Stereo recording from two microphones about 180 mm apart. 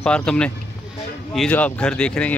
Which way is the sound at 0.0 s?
5° left (ahead or behind).